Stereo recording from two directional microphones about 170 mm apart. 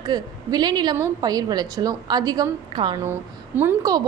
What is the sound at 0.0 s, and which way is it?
A woman's voice, 25° right (ahead or behind).